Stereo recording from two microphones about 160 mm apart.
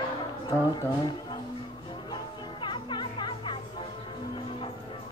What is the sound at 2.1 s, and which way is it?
Music, 30° left (ahead or behind).